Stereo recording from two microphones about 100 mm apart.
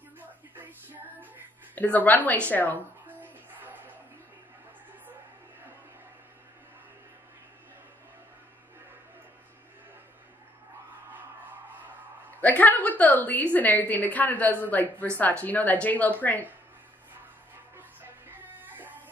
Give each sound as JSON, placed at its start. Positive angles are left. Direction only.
{"t": 0.2, "sound": "music", "side_deg": -20}
{"t": 1.8, "sound": "a woman's voice", "side_deg": 15}
{"t": 3.1, "sound": "music", "side_deg": -20}
{"t": 12.4, "sound": "a woman's voice", "side_deg": 15}
{"t": 17.7, "sound": "music", "side_deg": -20}